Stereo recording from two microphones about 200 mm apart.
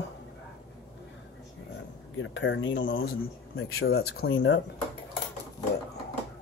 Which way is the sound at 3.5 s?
90° left.